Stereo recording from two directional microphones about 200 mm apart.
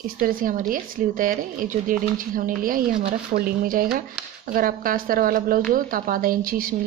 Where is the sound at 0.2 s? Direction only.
45° right (ahead or behind).